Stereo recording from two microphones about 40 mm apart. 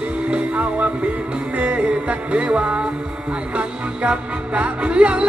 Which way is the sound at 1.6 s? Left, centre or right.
Right.